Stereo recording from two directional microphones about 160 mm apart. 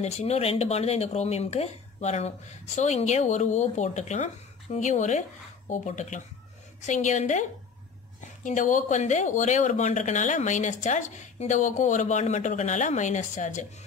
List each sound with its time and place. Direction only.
0.0 s speech: 40° left (ahead or behind)
8.5 s speech: 55° left (ahead or behind)